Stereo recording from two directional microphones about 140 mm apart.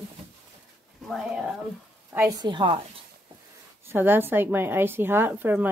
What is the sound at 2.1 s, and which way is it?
Speech, 20° right (ahead or behind).